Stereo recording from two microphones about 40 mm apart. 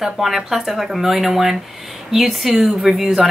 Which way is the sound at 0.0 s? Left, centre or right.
Centre.